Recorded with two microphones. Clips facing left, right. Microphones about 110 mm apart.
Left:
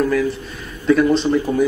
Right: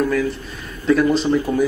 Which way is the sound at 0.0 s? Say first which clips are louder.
Left 1 dB; centre (ahead or behind).